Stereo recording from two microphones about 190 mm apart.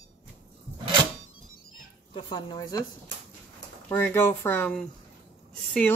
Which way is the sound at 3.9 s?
10° left (ahead or behind).